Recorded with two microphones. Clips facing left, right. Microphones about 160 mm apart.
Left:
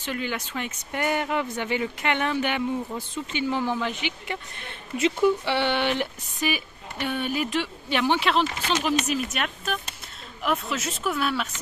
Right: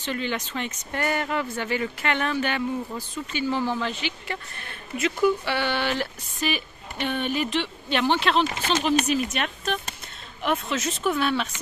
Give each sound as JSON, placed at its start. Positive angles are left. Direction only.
{"t": 0.0, "sound": "speech", "side_deg": 10}